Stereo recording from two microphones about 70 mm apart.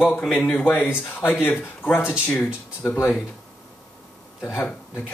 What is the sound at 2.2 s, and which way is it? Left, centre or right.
Speech, centre.